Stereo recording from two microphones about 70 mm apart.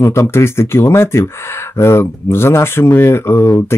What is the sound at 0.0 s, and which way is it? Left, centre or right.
Speech, left.